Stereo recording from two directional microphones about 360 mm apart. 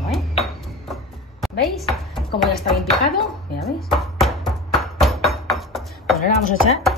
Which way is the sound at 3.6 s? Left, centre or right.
Centre.